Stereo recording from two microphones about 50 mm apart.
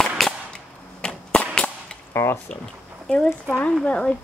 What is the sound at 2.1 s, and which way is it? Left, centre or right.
Speech, left.